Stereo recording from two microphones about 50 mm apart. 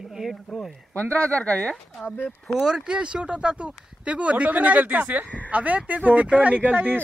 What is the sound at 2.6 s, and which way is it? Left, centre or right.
Speech, centre.